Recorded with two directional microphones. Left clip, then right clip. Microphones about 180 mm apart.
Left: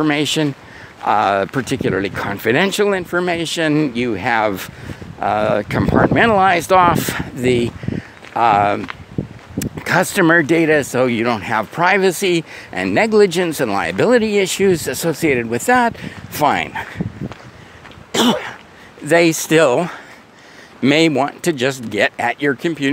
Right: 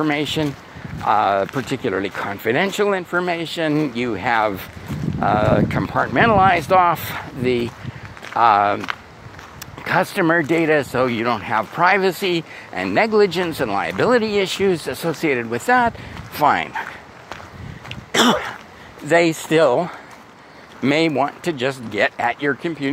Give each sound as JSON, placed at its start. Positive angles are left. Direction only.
{"t": 0.0, "sound": "speech", "side_deg": 50}
{"t": 9.8, "sound": "speech", "side_deg": 55}
{"t": 18.1, "sound": "a sound", "side_deg": 30}
{"t": 19.0, "sound": "speech", "side_deg": 40}